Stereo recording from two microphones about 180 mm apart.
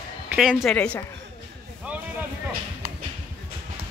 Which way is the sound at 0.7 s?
10° left (ahead or behind).